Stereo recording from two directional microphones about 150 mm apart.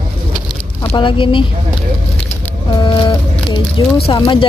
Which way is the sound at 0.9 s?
35° left (ahead or behind).